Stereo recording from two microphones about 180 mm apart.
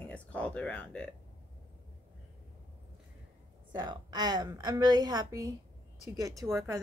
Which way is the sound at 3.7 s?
25° right (ahead or behind).